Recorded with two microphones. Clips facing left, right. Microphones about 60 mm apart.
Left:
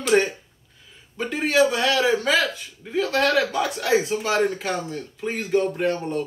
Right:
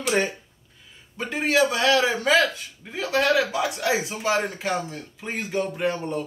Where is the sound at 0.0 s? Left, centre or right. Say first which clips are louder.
Left 4 dB; centre.